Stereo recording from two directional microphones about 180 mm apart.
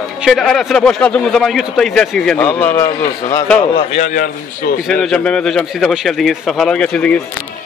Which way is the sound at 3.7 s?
40° left (ahead or behind).